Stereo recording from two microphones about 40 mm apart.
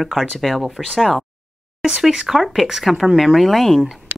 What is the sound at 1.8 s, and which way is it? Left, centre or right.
Speech, centre.